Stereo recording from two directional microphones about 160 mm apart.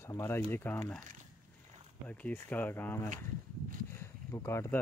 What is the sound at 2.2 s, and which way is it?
Speech, 10° left (ahead or behind).